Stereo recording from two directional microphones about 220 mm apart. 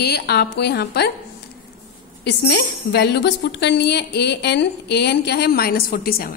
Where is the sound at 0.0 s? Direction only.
50° left (ahead or behind).